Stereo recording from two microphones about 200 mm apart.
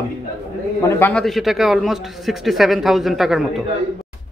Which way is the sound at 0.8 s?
10° left (ahead or behind).